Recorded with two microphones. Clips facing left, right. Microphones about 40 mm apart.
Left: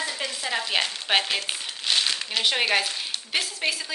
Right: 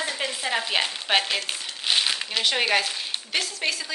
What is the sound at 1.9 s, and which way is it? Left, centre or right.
Crumpling, centre.